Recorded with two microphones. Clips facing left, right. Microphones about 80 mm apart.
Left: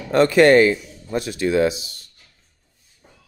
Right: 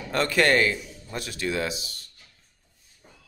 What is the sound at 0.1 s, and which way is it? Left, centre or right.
A man's voice, left.